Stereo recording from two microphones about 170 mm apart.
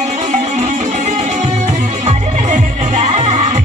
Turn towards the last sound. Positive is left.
turn(degrees=-40)  # may be behind; listen again after turning